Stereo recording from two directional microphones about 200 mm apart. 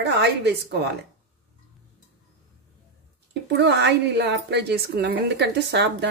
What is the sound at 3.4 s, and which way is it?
A woman's voice, 60° right (ahead or behind).